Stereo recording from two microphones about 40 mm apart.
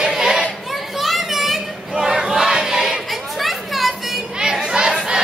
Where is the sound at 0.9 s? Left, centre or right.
Centre.